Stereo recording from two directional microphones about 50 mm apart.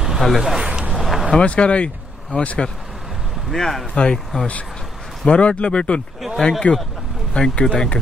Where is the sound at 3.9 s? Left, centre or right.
Centre.